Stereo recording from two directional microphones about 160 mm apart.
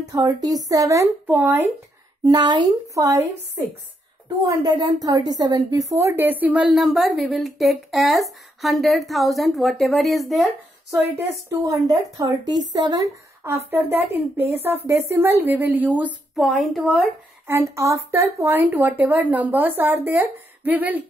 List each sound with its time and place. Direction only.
0.1 s speech: 25° right (ahead or behind)
2.2 s a woman's voice: 25° right (ahead or behind); by 10.5 s centre (ahead or behind)
10.9 s speech: 20° right (ahead or behind)
16.1 s a woman's voice: centre (ahead or behind)
17.5 s speech: 15° right (ahead or behind)